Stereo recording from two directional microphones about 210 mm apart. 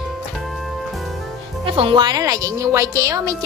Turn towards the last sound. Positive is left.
turn(degrees=-15)  # may be behind; listen again after turning